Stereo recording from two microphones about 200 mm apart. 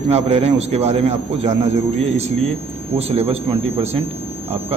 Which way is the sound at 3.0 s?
30° right (ahead or behind).